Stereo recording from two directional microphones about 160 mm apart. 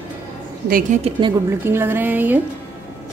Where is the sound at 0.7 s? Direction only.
55° right (ahead or behind).